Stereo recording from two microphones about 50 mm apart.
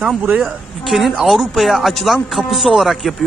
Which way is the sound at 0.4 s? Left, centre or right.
Centre.